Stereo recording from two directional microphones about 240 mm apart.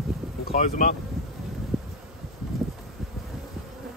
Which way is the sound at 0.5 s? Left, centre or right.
Left.